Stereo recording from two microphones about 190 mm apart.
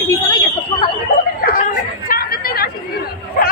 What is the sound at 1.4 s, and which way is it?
Chatter, 50° left (ahead or behind).